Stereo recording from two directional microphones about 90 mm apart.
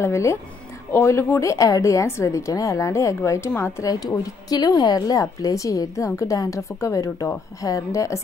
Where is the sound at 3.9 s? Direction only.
45° left (ahead or behind).